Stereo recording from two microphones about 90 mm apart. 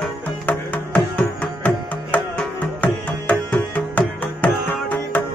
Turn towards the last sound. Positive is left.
turn(degrees=20)  # may be behind; listen again after turning